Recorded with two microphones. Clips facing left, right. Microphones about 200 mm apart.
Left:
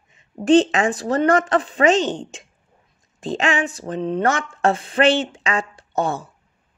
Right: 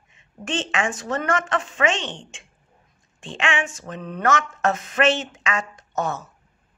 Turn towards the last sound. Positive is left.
turn(degrees=30)  # may be behind; listen again after turning